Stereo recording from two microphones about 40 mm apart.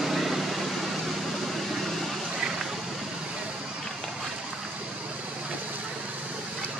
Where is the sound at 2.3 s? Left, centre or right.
Centre.